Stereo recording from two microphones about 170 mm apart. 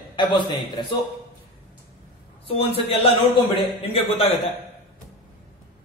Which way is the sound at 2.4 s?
35° left (ahead or behind).